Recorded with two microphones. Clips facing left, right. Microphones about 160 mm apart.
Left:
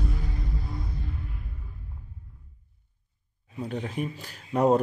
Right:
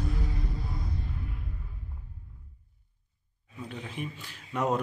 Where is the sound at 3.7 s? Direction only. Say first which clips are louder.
Left 6 dB; 40° left (ahead or behind).